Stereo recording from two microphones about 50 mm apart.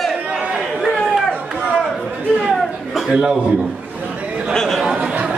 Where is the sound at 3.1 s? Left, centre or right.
Centre.